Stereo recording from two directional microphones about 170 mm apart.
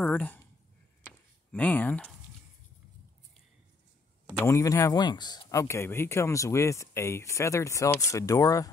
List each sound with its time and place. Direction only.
0.0 s speech: 5° left (ahead or behind)
1.0 s a sound: 10° left (ahead or behind)
4.5 s speech: 15° left (ahead or behind)